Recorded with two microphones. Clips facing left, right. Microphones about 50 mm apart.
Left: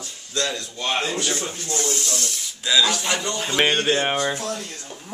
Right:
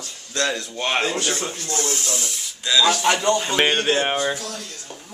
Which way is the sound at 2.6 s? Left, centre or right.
Centre.